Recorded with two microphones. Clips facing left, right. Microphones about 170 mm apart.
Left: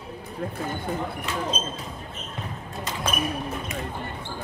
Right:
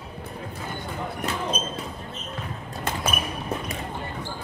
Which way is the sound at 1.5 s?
55° right (ahead or behind).